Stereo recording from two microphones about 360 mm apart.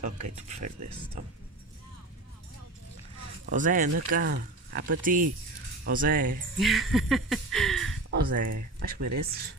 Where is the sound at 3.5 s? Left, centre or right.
Right.